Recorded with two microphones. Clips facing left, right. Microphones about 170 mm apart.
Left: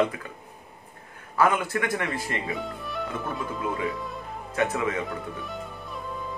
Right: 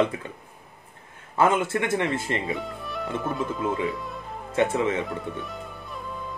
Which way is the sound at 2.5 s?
Centre (ahead or behind).